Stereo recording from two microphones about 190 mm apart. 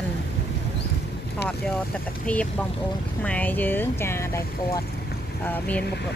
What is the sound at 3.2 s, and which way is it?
Speech, 5° left (ahead or behind).